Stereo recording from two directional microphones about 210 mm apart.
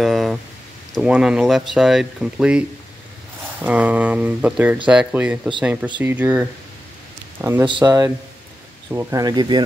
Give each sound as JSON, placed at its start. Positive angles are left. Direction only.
{"t": 0.0, "sound": "a sound", "side_deg": 0}
{"t": 0.9, "sound": "speech", "side_deg": -5}
{"t": 3.6, "sound": "speech", "side_deg": -5}
{"t": 7.6, "sound": "speech", "side_deg": -20}